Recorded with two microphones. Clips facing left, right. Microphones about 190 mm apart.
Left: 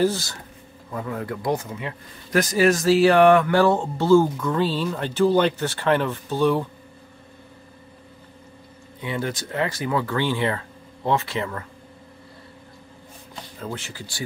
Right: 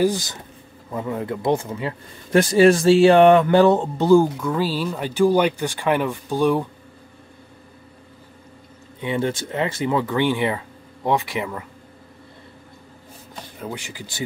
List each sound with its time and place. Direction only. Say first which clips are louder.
0.0 s speech: right 2 dB; 15° right (ahead or behind)
9.0 s speech: right 5 dB; 25° right (ahead or behind)
13.6 s speech: right 1 dB; 15° right (ahead or behind)